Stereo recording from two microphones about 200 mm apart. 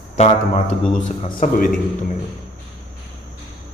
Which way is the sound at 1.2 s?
40° left (ahead or behind).